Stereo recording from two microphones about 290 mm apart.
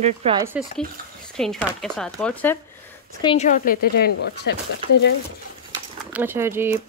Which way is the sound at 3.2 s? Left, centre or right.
Centre.